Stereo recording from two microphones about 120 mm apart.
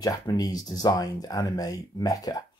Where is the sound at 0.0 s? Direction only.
35° left (ahead or behind).